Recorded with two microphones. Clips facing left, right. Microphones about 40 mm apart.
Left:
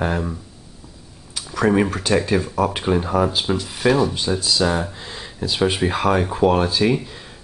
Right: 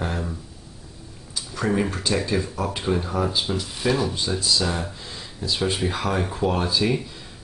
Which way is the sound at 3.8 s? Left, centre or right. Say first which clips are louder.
Left 6 dB; left.